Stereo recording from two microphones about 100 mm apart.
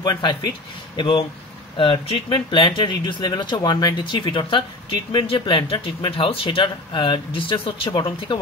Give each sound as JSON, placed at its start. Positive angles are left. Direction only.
{"t": 0.0, "sound": "speech", "side_deg": 45}
{"t": 1.8, "sound": "speech", "side_deg": 70}